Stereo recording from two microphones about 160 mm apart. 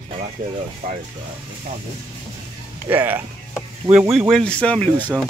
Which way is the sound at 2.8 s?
10° right (ahead or behind).